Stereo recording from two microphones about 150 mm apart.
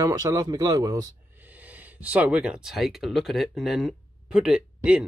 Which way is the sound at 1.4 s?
10° right (ahead or behind).